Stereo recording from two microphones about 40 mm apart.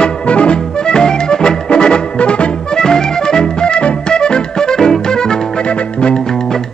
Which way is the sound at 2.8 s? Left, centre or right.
Centre.